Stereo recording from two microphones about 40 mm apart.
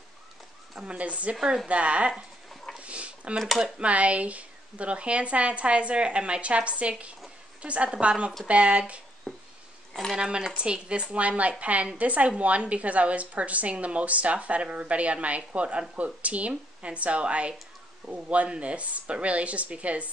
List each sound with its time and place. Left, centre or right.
0.8 s a woman's voice: right
2.5 s dog: centre
2.8 s a sound: right
3.7 s a woman's voice: right
9.3 s a sound: centre
10.1 s a woman's voice: right